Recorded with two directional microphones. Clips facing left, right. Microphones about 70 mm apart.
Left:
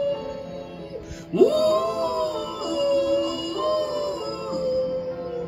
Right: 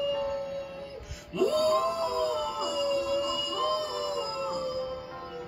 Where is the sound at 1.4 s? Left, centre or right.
Left.